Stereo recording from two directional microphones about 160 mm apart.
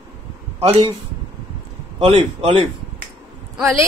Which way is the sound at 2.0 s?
35° right (ahead or behind).